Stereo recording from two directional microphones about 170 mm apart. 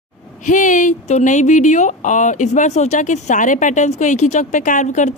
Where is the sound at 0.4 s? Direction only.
50° left (ahead or behind).